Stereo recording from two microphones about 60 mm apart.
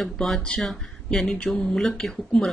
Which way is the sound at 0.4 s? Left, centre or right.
Centre.